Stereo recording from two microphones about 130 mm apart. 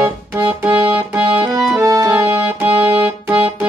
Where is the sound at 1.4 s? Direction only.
25° right (ahead or behind).